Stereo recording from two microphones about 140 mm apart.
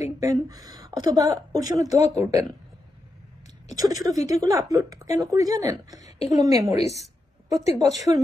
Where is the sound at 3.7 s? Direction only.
25° right (ahead or behind).